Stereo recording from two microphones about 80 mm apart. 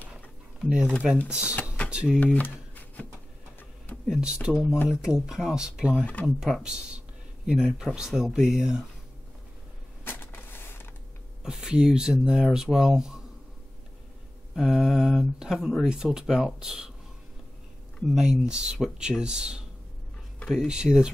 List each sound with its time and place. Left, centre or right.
0.7 s speech: centre
2.1 s speech: left
4.1 s speech: centre
10.0 s a sound: left
11.4 s speech: centre
14.5 s speech: centre
18.1 s speech: centre